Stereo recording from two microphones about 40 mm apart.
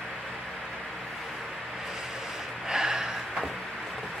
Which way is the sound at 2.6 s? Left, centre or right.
Centre.